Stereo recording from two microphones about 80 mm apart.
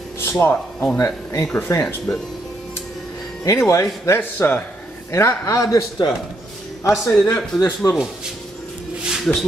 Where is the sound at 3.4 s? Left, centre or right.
Left.